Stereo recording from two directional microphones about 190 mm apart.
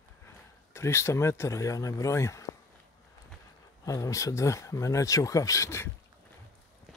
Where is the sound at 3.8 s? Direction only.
15° left (ahead or behind).